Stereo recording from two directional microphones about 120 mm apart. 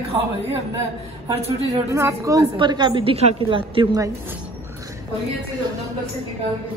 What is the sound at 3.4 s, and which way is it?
Speech, 45° right (ahead or behind).